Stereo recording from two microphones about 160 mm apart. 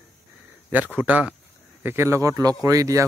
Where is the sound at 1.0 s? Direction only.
10° right (ahead or behind).